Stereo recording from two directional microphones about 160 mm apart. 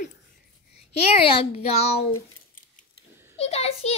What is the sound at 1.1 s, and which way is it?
Speech, 35° left (ahead or behind).